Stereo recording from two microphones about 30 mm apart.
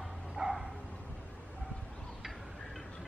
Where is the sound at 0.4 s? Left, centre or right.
Right.